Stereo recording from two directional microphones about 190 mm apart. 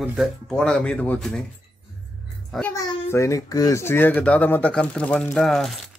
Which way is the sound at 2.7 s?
15° left (ahead or behind).